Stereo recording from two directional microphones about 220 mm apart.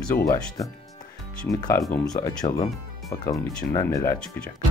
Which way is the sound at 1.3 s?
5° left (ahead or behind).